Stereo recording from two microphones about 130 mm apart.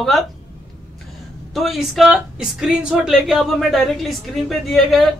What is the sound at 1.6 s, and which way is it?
A woman's voice, centre (ahead or behind).